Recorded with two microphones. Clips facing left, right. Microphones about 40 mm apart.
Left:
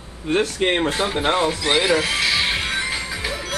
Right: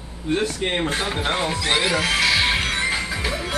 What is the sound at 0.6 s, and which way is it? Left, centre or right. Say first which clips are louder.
Speech: left 4 dB; left.